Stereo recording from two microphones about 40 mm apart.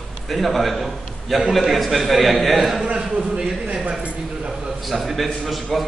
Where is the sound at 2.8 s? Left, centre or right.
Right.